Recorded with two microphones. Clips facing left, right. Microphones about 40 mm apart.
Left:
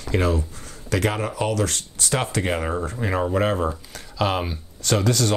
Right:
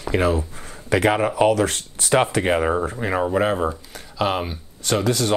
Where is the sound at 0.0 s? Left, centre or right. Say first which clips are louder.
Right 2 dB; centre.